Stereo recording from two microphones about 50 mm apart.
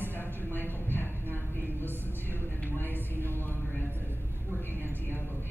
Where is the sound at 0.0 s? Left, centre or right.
Left.